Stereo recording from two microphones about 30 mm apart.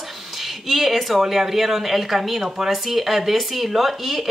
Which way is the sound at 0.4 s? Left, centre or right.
Centre.